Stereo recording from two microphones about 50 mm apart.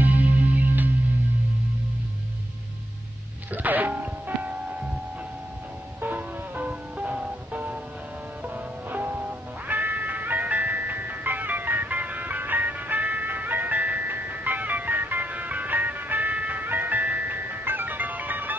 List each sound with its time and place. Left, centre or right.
0.0 s music: right
3.5 s music: right
5.9 s music: right
7.5 s music: right
10.7 s music: right